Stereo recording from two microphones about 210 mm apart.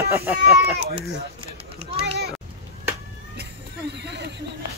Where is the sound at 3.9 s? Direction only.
55° right (ahead or behind).